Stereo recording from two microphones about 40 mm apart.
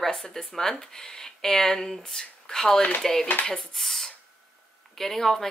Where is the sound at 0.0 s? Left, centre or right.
Centre.